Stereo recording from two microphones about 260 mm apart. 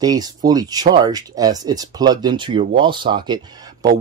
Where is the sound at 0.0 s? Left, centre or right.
Centre.